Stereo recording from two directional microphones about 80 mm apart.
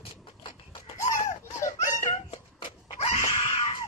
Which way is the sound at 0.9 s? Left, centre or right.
Left.